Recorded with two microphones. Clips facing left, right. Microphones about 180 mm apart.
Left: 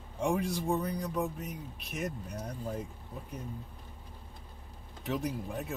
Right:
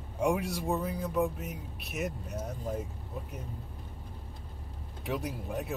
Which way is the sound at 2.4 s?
20° right (ahead or behind).